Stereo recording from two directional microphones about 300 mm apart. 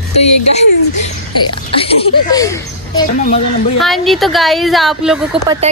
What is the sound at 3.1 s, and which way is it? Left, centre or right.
Speech, left.